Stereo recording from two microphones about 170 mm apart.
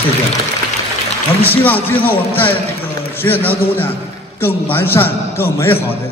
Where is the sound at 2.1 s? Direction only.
30° left (ahead or behind).